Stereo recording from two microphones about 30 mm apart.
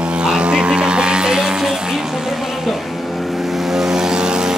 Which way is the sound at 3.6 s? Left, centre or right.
Centre.